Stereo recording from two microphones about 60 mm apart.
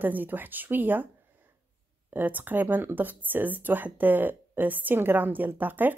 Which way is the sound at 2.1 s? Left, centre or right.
Right.